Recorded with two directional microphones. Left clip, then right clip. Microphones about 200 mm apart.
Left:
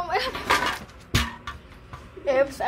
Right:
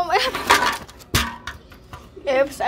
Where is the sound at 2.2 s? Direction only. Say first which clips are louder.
Right 3 dB; 10° right (ahead or behind).